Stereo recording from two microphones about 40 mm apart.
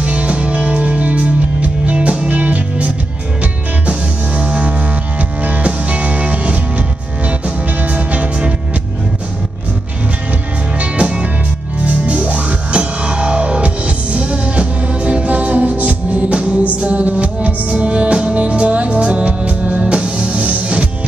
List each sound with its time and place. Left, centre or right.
0.0 s music: right
4.4 s music: right
10.8 s music: right